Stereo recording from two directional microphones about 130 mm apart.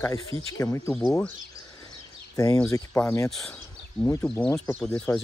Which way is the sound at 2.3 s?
25° left (ahead or behind).